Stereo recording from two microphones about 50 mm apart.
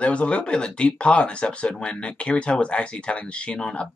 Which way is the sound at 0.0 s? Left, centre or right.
Left.